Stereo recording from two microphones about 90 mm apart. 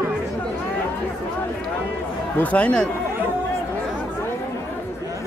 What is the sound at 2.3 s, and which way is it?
Speech, 15° left (ahead or behind).